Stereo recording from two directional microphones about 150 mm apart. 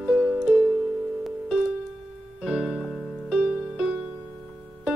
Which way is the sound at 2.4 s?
5° right (ahead or behind).